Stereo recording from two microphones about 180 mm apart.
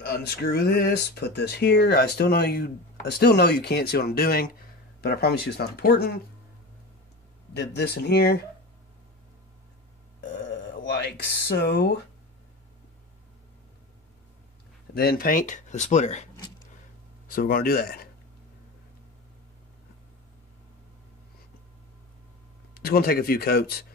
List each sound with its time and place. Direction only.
0.0 s speech: 65° left (ahead or behind)
7.5 s speech: 65° left (ahead or behind)
11.1 s speech: 65° left (ahead or behind)
15.0 s speech: 55° left (ahead or behind); by 16.3 s 40° left (ahead or behind)
17.3 s speech: 55° left (ahead or behind)
22.8 s speech: 60° left (ahead or behind)